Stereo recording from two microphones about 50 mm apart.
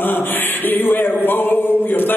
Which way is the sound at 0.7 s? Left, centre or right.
Left.